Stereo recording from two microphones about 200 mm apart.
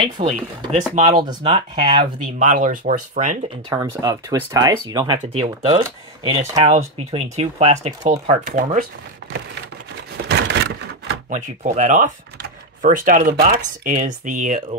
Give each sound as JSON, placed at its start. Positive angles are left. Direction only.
{"t": 0.0, "sound": "speech", "side_deg": -25}
{"t": 2.3, "sound": "speech", "side_deg": -40}
{"t": 3.7, "sound": "speech", "side_deg": -15}
{"t": 5.2, "sound": "speech", "side_deg": -30}
{"t": 9.2, "sound": "a sound", "side_deg": -60}
{"t": 11.2, "sound": "speech", "side_deg": -40}